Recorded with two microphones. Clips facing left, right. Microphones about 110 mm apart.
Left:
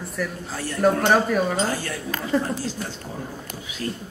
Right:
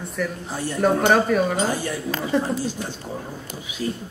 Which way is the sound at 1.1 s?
Centre (ahead or behind).